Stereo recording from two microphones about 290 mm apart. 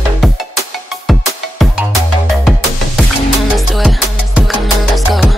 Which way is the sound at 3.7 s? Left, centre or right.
Centre.